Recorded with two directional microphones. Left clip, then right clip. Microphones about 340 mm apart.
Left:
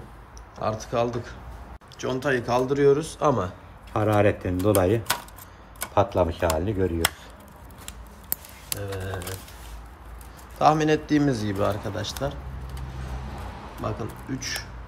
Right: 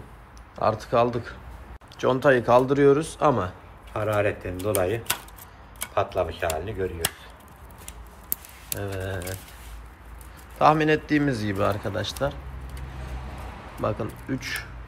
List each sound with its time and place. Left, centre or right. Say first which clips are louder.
0.6 s a man's voice: right 4 dB; centre
3.9 s speech: left 3 dB; left
8.8 s speech: right 2 dB; centre
10.6 s a man's voice: right 1 dB; centre
13.8 s a man's voice: right 4 dB; centre